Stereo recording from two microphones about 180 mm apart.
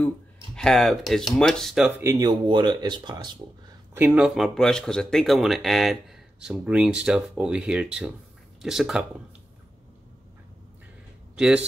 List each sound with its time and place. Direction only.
0.6 s speech: centre (ahead or behind)
1.9 s speech: 15° right (ahead or behind)
3.9 s speech: 10° right (ahead or behind)
11.3 s a man's voice: 5° right (ahead or behind)